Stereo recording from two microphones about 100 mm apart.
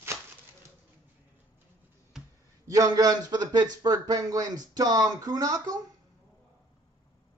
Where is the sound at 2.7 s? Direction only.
35° right (ahead or behind).